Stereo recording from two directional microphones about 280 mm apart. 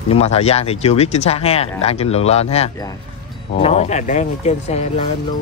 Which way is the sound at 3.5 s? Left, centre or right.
Left.